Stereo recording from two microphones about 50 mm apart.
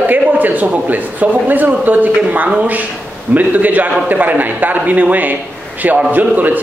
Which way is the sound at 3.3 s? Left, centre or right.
Right.